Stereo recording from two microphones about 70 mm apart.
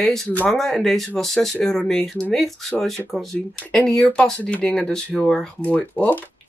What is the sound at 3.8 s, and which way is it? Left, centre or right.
Speech, centre.